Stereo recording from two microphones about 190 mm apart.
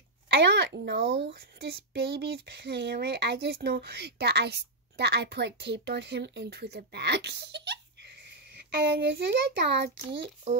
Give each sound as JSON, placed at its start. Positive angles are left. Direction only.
{"t": 0.3, "sound": "speech", "side_deg": -65}